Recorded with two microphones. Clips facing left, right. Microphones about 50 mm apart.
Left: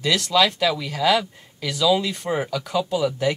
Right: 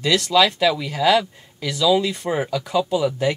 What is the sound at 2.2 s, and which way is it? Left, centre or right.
Speech, centre.